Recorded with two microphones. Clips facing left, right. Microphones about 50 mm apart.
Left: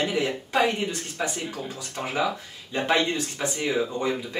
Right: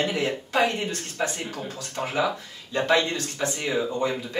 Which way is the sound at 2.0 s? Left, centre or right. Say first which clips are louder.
Right 2 dB; centre.